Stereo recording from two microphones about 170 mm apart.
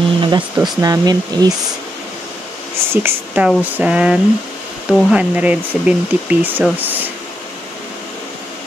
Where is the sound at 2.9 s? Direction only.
10° right (ahead or behind).